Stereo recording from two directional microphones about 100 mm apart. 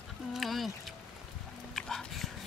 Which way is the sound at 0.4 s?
Centre (ahead or behind).